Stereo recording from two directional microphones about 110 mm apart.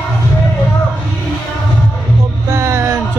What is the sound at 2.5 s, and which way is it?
Music, 25° right (ahead or behind).